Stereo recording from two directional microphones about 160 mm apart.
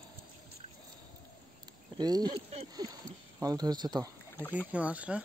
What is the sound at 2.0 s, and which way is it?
Speech, 25° right (ahead or behind).